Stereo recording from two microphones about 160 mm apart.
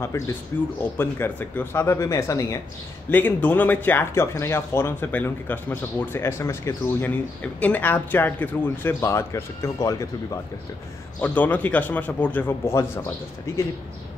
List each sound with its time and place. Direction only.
0.0 s speech: 15° left (ahead or behind)